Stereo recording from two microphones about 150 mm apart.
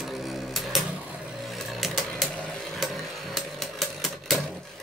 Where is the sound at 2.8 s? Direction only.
Centre (ahead or behind).